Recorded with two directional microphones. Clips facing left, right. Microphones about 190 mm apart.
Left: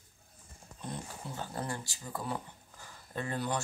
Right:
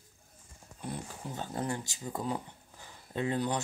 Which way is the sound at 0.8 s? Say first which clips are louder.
Right 2 dB; 10° right (ahead or behind).